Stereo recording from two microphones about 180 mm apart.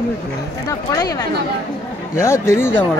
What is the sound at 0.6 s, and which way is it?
Speech, 20° left (ahead or behind).